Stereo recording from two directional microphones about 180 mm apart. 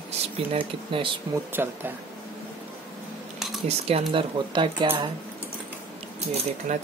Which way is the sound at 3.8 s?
30° right (ahead or behind).